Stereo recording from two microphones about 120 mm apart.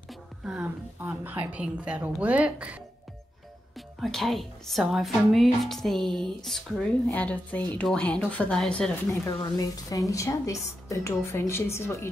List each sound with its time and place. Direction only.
0.1 s music: 5° right (ahead or behind)
1.0 s a woman's voice: 15° right (ahead or behind)
3.7 s speech: centre (ahead or behind)
9.4 s a woman's voice: 30° left (ahead or behind)